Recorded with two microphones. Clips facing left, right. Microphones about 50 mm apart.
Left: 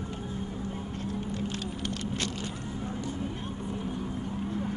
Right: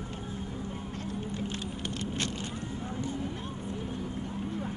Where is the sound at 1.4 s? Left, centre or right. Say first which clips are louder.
Left 2 dB; right.